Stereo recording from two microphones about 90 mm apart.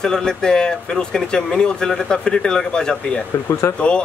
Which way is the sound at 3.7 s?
30° left (ahead or behind).